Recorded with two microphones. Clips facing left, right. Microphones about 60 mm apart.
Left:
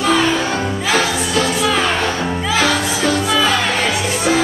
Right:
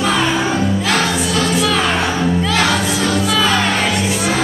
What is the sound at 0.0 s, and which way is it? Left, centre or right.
Music, centre.